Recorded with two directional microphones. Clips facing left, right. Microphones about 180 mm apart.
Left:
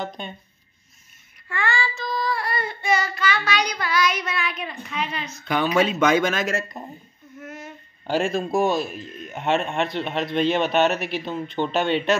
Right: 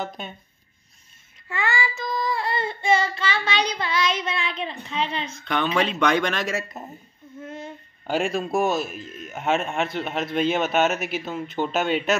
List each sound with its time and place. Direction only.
1.5 s child singing: 20° right (ahead or behind)
5.4 s speech: 5° left (ahead or behind)
7.3 s a sound: 30° right (ahead or behind)
8.1 s speech: centre (ahead or behind)